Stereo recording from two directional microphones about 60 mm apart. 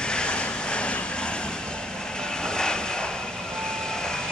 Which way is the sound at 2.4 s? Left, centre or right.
Centre.